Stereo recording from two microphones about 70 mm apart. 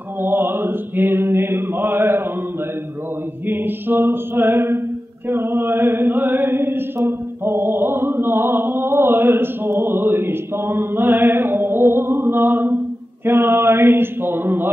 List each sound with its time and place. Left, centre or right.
0.2 s mantra: right
3.4 s mantra: right
13.2 s a sound: right